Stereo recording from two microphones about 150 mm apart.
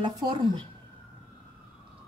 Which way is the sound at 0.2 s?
30° right (ahead or behind).